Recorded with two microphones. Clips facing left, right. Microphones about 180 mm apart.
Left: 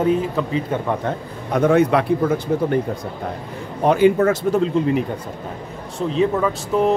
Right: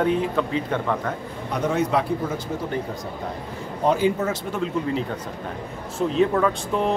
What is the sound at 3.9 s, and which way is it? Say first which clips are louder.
Speech: left 6 dB; 65° left (ahead or behind).